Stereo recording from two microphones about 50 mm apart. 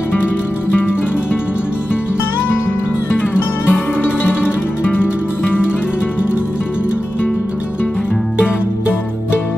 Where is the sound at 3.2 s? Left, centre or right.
Left.